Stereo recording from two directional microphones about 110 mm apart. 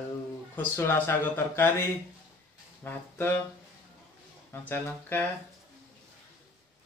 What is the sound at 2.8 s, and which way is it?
Speech, 20° left (ahead or behind).